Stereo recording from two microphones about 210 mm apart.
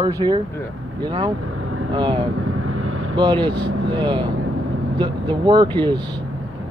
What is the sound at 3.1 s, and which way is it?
Speech, 20° right (ahead or behind).